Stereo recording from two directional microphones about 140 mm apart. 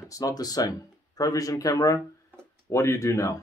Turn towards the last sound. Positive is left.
turn(degrees=20)  # may be behind; listen again after turning